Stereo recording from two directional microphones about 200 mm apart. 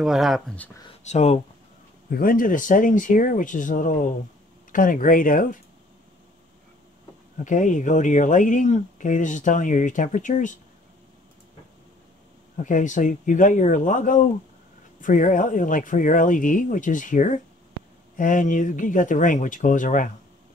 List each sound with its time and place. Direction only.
0.0 s speech: centre (ahead or behind)
1.0 s speech: 35° left (ahead or behind)
2.0 s speech: 45° left (ahead or behind)
7.4 s speech: 40° left (ahead or behind)
12.5 s speech: 40° left (ahead or behind)